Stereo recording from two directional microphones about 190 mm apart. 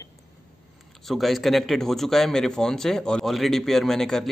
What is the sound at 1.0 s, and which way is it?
A man's voice, centre (ahead or behind).